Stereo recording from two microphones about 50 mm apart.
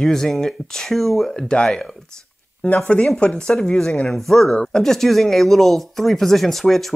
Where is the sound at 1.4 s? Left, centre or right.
Centre.